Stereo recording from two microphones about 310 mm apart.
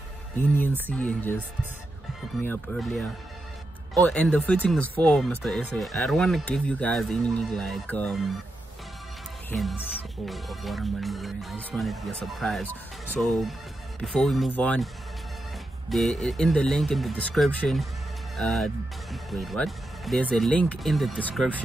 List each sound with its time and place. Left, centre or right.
0.4 s speech: centre
2.4 s speech: centre
4.1 s speech: centre
9.5 s speech: centre
15.9 s speech: centre